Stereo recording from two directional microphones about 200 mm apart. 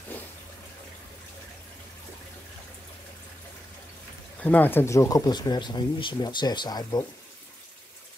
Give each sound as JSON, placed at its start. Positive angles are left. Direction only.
{"t": 4.4, "sound": "speech", "side_deg": 10}